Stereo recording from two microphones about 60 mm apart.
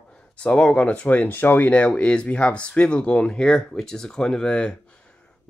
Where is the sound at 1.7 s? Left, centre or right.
Centre.